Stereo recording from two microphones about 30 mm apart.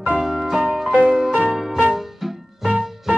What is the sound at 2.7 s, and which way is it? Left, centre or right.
Music, right.